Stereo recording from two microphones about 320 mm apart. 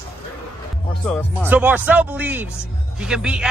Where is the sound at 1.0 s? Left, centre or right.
Centre.